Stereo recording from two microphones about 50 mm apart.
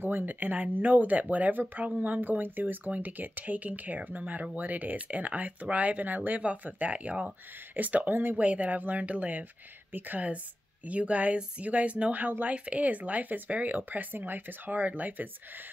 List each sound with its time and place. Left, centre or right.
0.0 s speech: right
8.4 s speech: right